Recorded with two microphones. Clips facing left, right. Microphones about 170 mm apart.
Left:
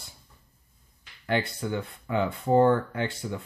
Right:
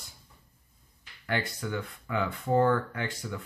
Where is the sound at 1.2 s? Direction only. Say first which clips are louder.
Left 4 dB; 25° left (ahead or behind).